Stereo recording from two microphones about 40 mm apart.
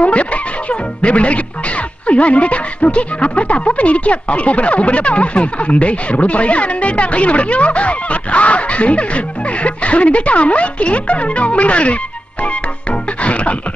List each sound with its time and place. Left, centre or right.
0.0 s speech: left
13.2 s speech: left